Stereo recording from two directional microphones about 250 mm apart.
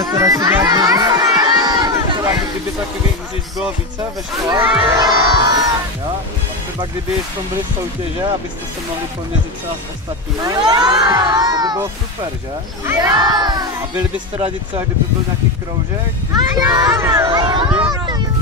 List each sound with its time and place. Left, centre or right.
0.0 s children playing: centre
4.5 s speech: centre
10.4 s speech: centre
12.8 s music: centre
16.3 s children playing: centre
17.6 s a sound: centre